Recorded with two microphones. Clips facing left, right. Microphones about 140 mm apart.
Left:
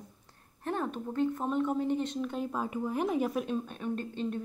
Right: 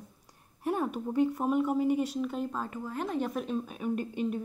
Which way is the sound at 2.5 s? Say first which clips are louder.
Left 3 dB; 10° left (ahead or behind).